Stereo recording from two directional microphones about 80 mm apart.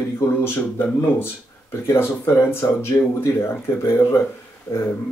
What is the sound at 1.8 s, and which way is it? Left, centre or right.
Speech, left.